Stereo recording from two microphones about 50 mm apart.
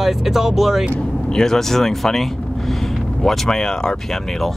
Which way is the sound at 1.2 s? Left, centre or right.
Centre.